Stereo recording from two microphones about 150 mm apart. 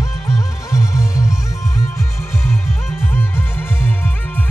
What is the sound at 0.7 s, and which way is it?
Music, 20° left (ahead or behind).